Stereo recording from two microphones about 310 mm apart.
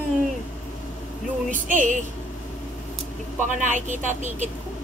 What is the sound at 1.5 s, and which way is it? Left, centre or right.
Speech, right.